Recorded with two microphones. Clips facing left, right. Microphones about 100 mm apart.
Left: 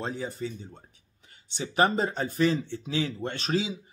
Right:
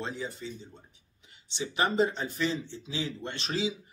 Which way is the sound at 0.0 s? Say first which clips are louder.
Left 4 dB; 45° left (ahead or behind).